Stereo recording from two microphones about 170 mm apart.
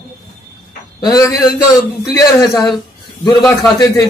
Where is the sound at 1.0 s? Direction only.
20° left (ahead or behind).